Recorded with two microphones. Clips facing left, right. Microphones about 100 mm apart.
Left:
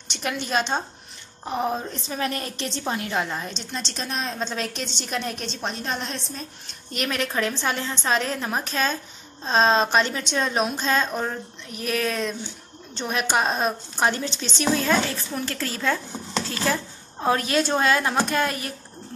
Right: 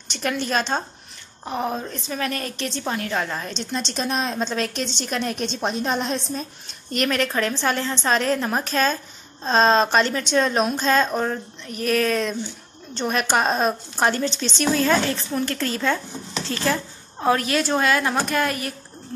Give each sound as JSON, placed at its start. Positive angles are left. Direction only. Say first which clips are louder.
{"t": 0.1, "sound": "a woman's voice", "louder": "right 2 dB", "side_deg": 15}
{"t": 3.7, "sound": "a woman's voice", "louder": "right 6 dB", "side_deg": -10}
{"t": 4.5, "sound": "a woman's voice", "louder": "right 4 dB", "side_deg": 5}
{"t": 5.6, "sound": "a woman's voice", "louder": "right 5 dB", "side_deg": -15}
{"t": 6.9, "sound": "a woman's voice", "louder": "right 5 dB", "side_deg": 5}
{"t": 17.3, "sound": "a woman's voice", "louder": "right 1 dB", "side_deg": 30}